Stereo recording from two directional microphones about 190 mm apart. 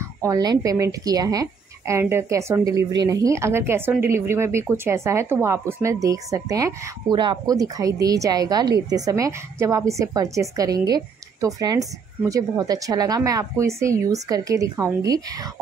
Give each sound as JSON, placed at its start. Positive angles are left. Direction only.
{"t": 0.0, "sound": "speech", "side_deg": -15}